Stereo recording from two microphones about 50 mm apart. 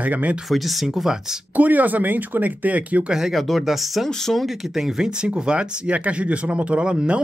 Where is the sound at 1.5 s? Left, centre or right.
Right.